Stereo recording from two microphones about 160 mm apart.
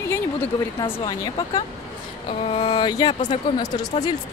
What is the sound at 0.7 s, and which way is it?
Speech, 30° left (ahead or behind).